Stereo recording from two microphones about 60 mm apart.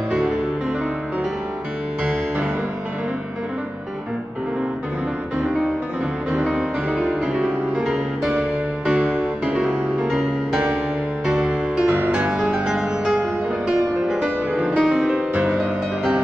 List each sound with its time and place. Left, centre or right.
5.4 s music: centre
9.5 s music: centre
11.9 s music: right
12.5 s music: centre
14.2 s music: right
14.8 s music: centre